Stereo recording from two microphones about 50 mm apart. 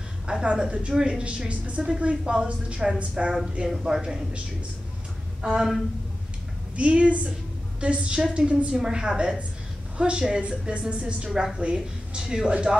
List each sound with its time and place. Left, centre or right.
0.3 s a woman's voice: centre
3.6 s speech: centre
5.4 s speech: centre
6.8 s a woman's voice: right